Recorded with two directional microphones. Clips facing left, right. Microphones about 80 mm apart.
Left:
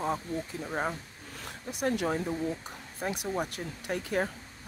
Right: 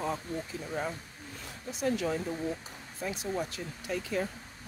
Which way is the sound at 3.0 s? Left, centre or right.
Left.